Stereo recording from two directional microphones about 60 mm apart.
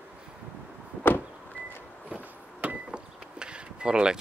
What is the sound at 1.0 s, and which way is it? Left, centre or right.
Vehicle, left.